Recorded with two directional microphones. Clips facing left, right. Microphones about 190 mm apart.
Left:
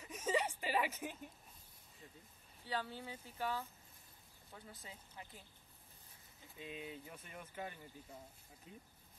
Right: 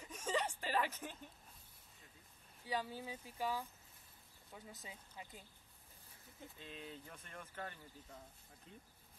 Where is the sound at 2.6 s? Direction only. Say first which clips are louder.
Right 1 dB; 10° right (ahead or behind).